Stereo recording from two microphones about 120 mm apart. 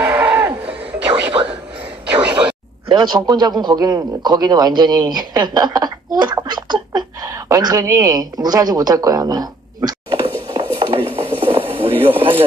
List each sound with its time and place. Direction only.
0.0 s music: 15° right (ahead or behind)
1.0 s music: 40° right (ahead or behind)
2.9 s a man's voice: 40° right (ahead or behind)
7.2 s a woman's voice: 25° right (ahead or behind)
10.6 s a sound: 45° right (ahead or behind)